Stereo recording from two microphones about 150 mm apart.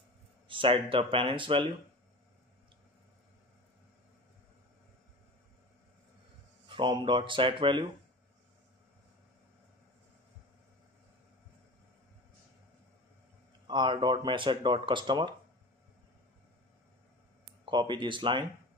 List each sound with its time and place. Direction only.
0.5 s speech: 35° right (ahead or behind)
6.7 s speech: 30° right (ahead or behind)
13.7 s speech: 30° right (ahead or behind)
17.6 s speech: 30° right (ahead or behind)